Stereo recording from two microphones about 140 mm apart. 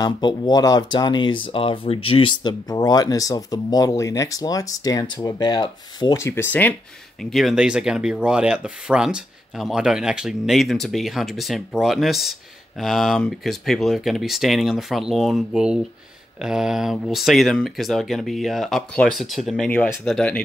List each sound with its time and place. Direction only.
0.0 s speech: 30° left (ahead or behind)
6.1 s speech: 15° left (ahead or behind)
7.2 s speech: centre (ahead or behind)